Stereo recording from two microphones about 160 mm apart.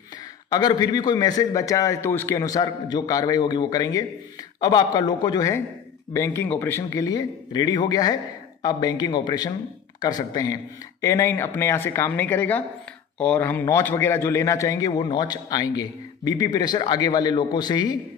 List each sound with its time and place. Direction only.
0.5 s a man's voice: 25° left (ahead or behind)